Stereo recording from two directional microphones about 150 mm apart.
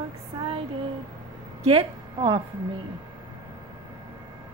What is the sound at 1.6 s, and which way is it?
Speech, 35° right (ahead or behind).